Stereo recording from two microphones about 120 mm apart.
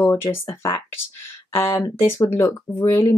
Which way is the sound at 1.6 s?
20° left (ahead or behind).